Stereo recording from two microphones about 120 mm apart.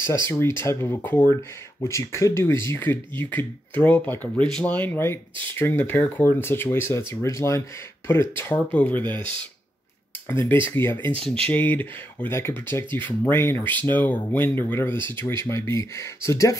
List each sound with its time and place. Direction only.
0.0 s speech: 20° left (ahead or behind)
10.5 s speech: 20° left (ahead or behind)